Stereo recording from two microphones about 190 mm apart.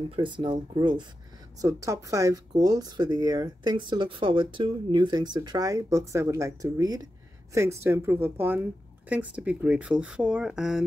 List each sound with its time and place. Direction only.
0.1 s speech: 25° right (ahead or behind); by 10.9 s centre (ahead or behind)